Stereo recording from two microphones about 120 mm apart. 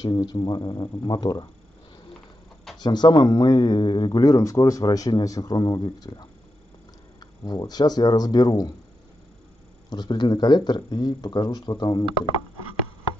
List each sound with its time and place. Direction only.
0.0 s speech: 35° left (ahead or behind)
2.8 s speech: 35° left (ahead or behind)
9.8 s speech: 35° left (ahead or behind)